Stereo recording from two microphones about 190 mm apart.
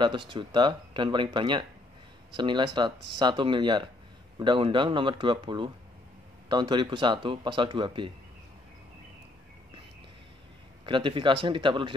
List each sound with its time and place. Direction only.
0.0 s speech: 25° right (ahead or behind)
10.9 s speech: 25° right (ahead or behind)